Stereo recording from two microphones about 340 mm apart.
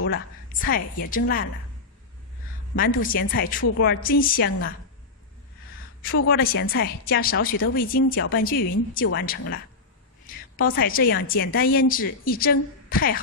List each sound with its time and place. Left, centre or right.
0.0 s a woman's voice: left
2.8 s a woman's voice: left
6.0 s a woman's voice: left
10.6 s a woman's voice: left